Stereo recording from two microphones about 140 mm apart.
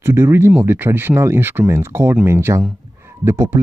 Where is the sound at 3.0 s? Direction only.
20° right (ahead or behind).